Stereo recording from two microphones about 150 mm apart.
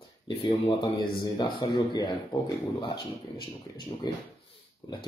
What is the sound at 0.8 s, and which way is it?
Speech, 30° left (ahead or behind).